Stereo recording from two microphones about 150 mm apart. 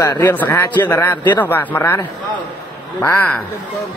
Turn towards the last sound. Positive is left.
turn(degrees=10)  # may be behind; listen again after turning